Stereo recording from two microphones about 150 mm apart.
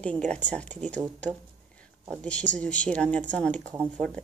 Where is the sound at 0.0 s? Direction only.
5° left (ahead or behind).